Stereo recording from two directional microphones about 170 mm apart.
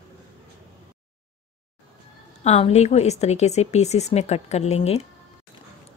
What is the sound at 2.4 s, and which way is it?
A woman's voice, 40° left (ahead or behind).